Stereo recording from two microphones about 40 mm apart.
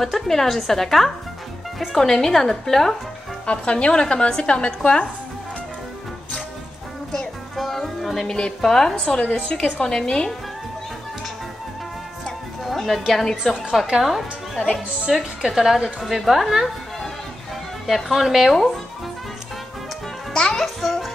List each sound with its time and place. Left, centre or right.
0.0 s a woman's voice: centre
3.4 s a woman's voice: left
7.5 s music: centre
8.5 s a woman's voice: centre
9.2 s a woman's voice: left
12.6 s a woman's voice: centre
17.8 s speech: centre
20.6 s music: centre